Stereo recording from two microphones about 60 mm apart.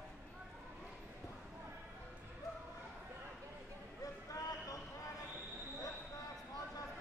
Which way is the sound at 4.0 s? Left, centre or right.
Left.